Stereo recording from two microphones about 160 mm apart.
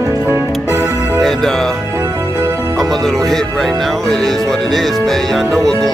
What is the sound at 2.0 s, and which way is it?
Music, 20° right (ahead or behind).